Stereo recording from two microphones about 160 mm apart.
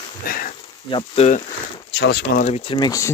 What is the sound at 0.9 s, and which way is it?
Speech, 30° left (ahead or behind).